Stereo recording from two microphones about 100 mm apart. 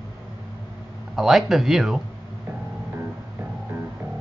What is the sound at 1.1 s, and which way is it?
Speech, 5° right (ahead or behind).